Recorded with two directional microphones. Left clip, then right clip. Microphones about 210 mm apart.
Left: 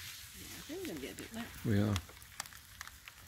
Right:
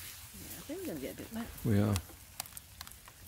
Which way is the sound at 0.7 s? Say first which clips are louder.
Right 2 dB; 50° right (ahead or behind).